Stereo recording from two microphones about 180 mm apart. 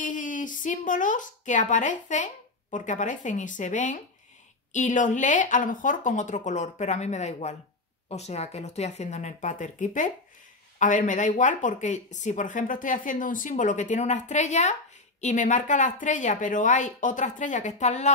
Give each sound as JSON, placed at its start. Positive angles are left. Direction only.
{"t": 0.0, "sound": "a woman's voice", "side_deg": 45}